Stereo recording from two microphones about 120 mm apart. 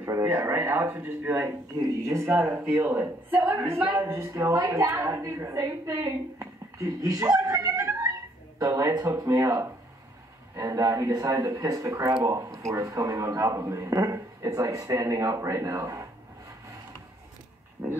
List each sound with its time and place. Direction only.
0.0 s speech: 20° right (ahead or behind)